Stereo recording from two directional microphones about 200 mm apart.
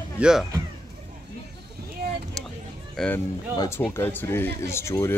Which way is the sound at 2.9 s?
5° left (ahead or behind).